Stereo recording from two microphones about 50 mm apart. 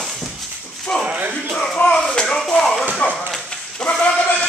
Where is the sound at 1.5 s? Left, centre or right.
Centre.